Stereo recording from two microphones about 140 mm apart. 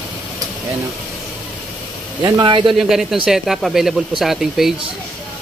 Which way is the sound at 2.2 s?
30° right (ahead or behind).